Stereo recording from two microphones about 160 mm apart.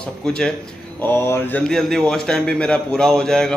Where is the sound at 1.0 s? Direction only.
15° left (ahead or behind).